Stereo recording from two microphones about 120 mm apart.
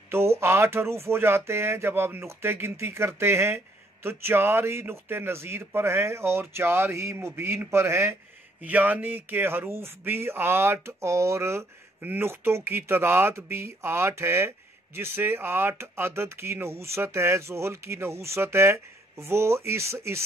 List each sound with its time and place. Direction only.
0.1 s speech: 20° right (ahead or behind)